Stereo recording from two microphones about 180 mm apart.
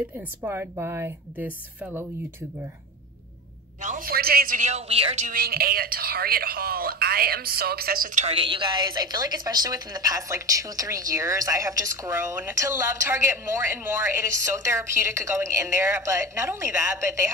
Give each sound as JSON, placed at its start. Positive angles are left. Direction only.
{"t": 0.4, "sound": "a woman's voice", "side_deg": -15}
{"t": 3.8, "sound": "speech", "side_deg": -50}
{"t": 5.3, "sound": "speech", "side_deg": -55}
{"t": 8.4, "sound": "a woman's voice", "side_deg": -30}